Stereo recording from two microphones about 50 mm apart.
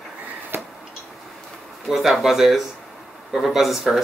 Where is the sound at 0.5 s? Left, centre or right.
Right.